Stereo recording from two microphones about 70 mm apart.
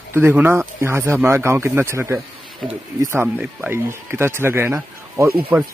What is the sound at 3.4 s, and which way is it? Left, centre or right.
Speech, right.